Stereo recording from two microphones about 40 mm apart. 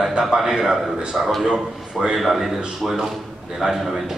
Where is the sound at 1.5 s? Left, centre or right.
Right.